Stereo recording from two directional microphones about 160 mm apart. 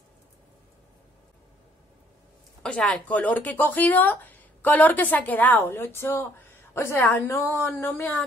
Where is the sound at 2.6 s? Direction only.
5° left (ahead or behind).